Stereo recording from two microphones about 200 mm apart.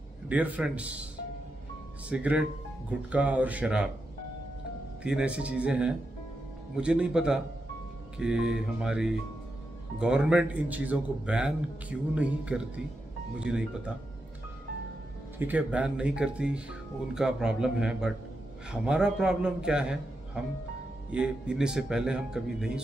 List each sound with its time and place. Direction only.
0.3 s speech: 5° right (ahead or behind)
2.0 s speech: 5° right (ahead or behind)
5.0 s speech: 5° right (ahead or behind)
15.3 s speech: 10° right (ahead or behind)
21.1 s speech: 5° right (ahead or behind)